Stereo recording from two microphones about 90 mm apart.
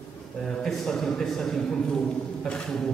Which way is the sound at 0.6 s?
5° left (ahead or behind).